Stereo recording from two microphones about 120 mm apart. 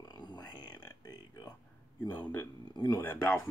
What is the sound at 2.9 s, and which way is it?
Speech, 15° left (ahead or behind).